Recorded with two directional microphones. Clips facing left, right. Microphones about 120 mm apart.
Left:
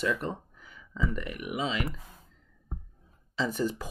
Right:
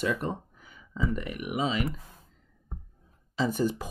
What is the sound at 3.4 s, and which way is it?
Speech, 25° right (ahead or behind).